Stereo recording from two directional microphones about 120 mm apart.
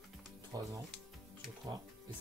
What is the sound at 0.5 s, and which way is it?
Speech, 30° right (ahead or behind).